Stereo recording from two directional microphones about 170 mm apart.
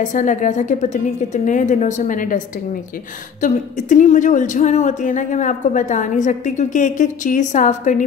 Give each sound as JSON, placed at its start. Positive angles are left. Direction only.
{"t": 0.0, "sound": "a woman's voice", "side_deg": 50}